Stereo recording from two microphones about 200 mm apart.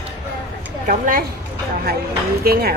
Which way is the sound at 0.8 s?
45° right (ahead or behind).